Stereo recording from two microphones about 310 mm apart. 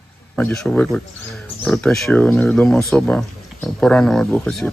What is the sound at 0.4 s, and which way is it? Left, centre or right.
Speech, centre.